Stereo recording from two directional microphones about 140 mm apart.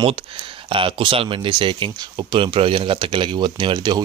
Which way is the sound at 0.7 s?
40° right (ahead or behind).